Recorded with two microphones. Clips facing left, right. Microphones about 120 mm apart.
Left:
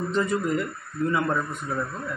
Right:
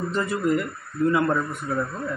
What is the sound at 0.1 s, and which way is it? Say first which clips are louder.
Speech: right 1 dB; 10° right (ahead or behind).